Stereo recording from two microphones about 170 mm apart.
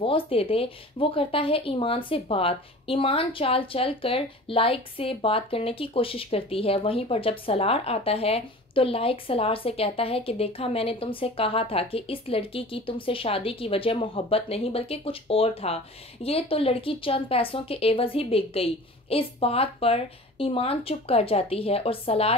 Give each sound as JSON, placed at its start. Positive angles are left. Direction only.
{"t": 0.0, "sound": "speech", "side_deg": 30}